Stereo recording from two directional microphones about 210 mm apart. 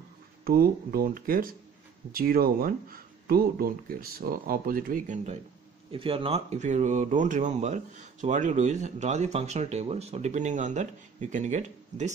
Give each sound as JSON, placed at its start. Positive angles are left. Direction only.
{"t": 0.5, "sound": "speech", "side_deg": -45}